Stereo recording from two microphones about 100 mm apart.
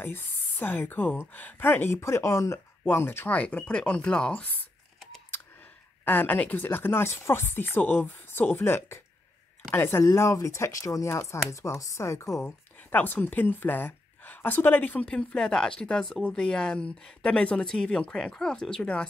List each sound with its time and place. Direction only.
0.0 s speech: 20° left (ahead or behind)
6.0 s speech: 15° left (ahead or behind)
12.4 s speech: 20° left (ahead or behind)